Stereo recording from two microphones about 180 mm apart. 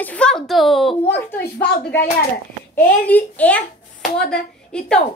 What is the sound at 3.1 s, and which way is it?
A woman's voice, 10° left (ahead or behind).